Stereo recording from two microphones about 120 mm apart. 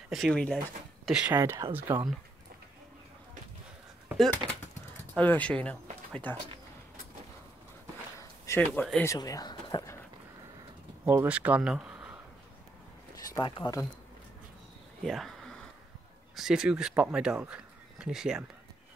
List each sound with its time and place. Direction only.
0.1 s speech: 5° left (ahead or behind)
1.1 s speech: 10° right (ahead or behind)
1.4 s speech: 20° right (ahead or behind)
4.4 s speech: 30° right (ahead or behind)
5.1 s speech: 10° left (ahead or behind)
8.5 s speech: 25° left (ahead or behind)
11.1 s speech: 15° right (ahead or behind)
13.2 s speech: 35° left (ahead or behind)
15.0 s a sound: centre (ahead or behind)
16.3 s speech: 5° right (ahead or behind)